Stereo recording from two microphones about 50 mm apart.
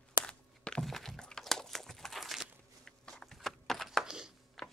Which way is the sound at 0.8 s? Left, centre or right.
Centre.